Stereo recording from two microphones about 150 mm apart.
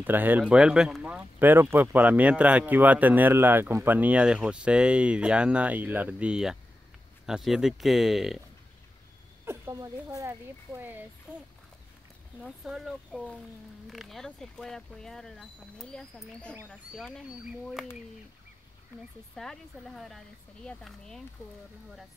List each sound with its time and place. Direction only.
0.0 s speech: 10° right (ahead or behind)
9.4 s speech: 15° right (ahead or behind)
19.3 s speech: 5° left (ahead or behind)